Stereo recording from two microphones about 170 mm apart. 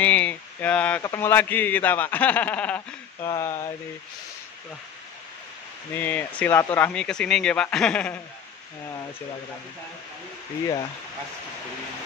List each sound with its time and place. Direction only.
0.0 s a sound: 10° left (ahead or behind)
1.0 s a man's voice: 15° left (ahead or behind)
5.9 s a man's voice: 10° left (ahead or behind)